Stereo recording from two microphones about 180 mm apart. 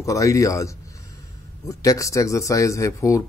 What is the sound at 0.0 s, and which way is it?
A man's voice, 15° left (ahead or behind).